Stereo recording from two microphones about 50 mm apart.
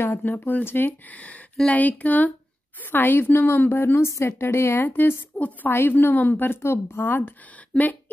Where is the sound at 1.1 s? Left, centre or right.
Left.